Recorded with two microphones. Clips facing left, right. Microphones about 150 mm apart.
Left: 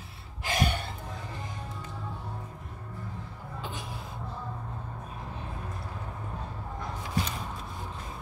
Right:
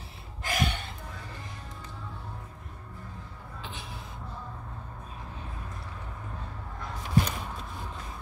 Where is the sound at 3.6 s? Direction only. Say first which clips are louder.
Left 4 dB; 45° left (ahead or behind).